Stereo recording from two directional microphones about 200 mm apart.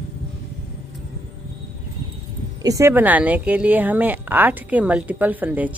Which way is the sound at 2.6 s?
15° right (ahead or behind).